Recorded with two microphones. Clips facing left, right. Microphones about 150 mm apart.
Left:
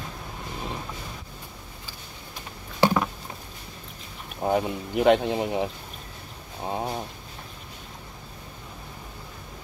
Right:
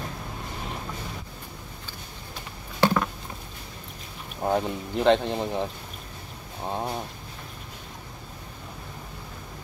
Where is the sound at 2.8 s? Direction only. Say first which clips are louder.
Left 1 dB; 10° left (ahead or behind).